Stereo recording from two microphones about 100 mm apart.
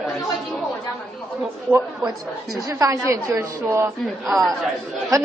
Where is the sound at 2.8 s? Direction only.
30° right (ahead or behind).